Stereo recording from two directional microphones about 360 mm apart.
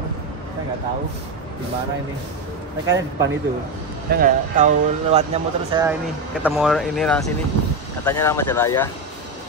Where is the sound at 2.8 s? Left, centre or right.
Centre.